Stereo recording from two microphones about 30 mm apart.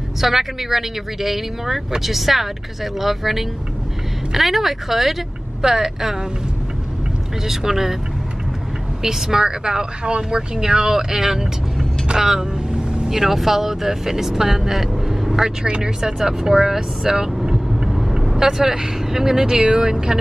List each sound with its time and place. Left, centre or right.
0.2 s speech: centre
5.6 s speech: centre
7.4 s speech: centre
9.0 s speech: centre
12.1 s speech: right
12.7 s vehicle: right
13.1 s speech: centre
15.6 s speech: right
17.8 s vehicle: centre
18.4 s speech: centre